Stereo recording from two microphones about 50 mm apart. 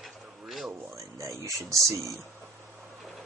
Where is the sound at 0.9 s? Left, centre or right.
Right.